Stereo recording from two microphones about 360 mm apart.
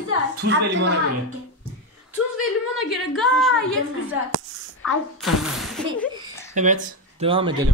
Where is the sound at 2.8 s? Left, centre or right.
Centre.